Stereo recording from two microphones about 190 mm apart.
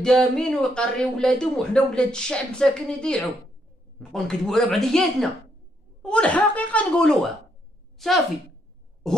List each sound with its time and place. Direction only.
0.0 s speech: 5° left (ahead or behind)